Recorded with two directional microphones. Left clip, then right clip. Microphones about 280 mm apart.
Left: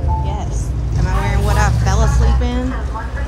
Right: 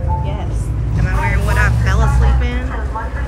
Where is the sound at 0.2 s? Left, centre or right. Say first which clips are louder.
Left 1 dB; centre.